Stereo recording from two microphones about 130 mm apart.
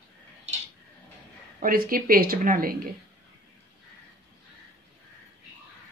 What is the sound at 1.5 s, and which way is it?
A woman's voice, 90° right.